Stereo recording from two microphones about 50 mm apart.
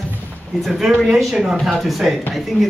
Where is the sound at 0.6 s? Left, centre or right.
Centre.